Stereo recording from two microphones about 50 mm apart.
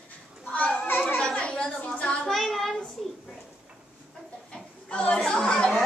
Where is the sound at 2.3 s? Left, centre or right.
Centre.